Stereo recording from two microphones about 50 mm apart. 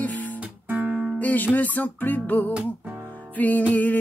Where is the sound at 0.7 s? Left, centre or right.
Right.